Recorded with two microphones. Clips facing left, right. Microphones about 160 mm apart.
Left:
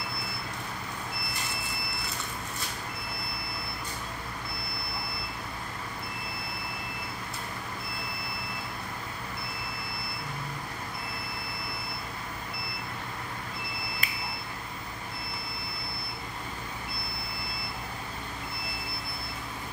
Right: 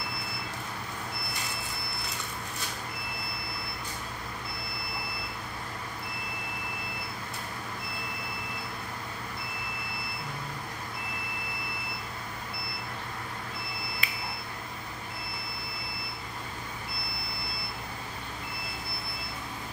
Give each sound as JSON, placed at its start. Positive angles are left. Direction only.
{"t": 14.0, "sound": "beep", "side_deg": 45}